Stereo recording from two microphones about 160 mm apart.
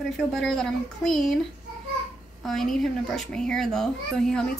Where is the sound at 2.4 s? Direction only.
Centre (ahead or behind).